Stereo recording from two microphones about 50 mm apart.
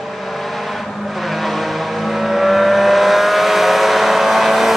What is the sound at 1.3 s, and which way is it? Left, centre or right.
Vehicle, centre.